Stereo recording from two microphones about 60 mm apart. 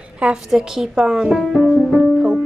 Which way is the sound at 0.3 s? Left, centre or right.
Centre.